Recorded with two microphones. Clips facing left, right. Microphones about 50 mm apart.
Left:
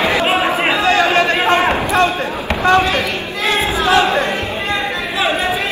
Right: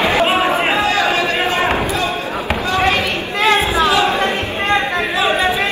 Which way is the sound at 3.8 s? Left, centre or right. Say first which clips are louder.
Left 2 dB; left.